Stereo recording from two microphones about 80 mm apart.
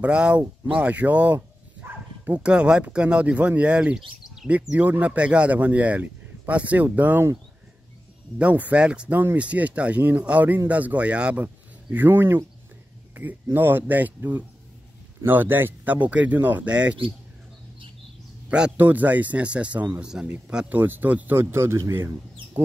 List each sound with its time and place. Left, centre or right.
0.0 s speech: centre
8.4 s speech: centre
11.4 s speech: right
18.8 s speech: right